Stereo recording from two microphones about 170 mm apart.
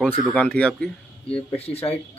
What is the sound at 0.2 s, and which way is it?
Speech, 5° left (ahead or behind).